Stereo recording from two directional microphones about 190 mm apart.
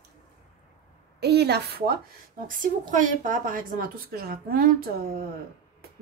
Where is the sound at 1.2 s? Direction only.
60° right (ahead or behind).